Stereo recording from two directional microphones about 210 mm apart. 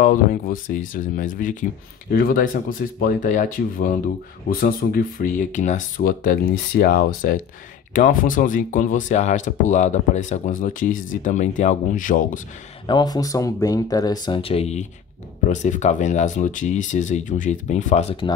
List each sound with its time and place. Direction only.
0.0 s speech: 40° left (ahead or behind)
12.8 s speech: 20° left (ahead or behind)